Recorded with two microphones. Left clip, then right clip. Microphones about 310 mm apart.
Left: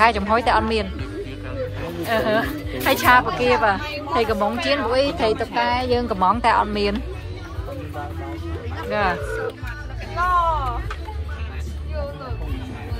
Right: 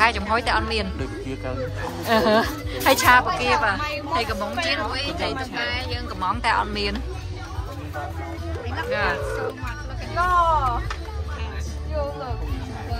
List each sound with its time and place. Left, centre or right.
0.0 s speech: centre
2.0 s a woman's voice: centre
10.1 s vehicle: right